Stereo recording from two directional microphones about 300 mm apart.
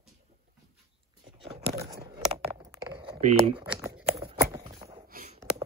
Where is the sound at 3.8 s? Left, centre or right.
Centre.